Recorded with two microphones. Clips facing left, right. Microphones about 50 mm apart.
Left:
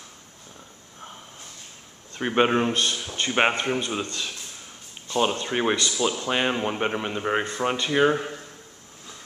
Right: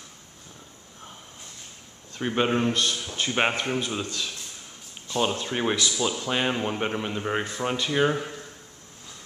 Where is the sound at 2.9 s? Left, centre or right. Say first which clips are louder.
Left 2 dB; centre.